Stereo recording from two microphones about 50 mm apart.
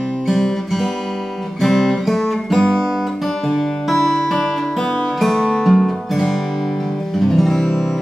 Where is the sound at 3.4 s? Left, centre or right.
Centre.